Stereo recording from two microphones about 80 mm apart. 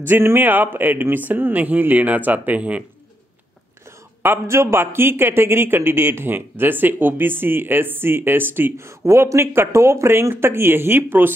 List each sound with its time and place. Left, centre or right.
0.0 s a man's voice: right
4.2 s a man's voice: right